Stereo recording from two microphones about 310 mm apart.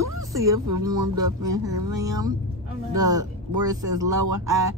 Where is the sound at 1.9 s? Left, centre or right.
Centre.